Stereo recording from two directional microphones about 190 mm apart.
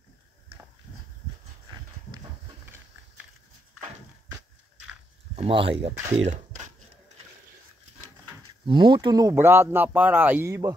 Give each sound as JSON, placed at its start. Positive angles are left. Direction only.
{"t": 5.3, "sound": "speech", "side_deg": -30}
{"t": 8.6, "sound": "speech", "side_deg": -25}